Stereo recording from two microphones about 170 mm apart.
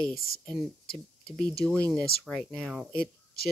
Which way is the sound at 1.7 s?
5° left (ahead or behind).